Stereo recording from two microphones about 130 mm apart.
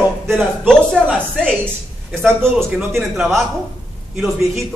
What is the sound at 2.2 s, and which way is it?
Speech, 15° right (ahead or behind).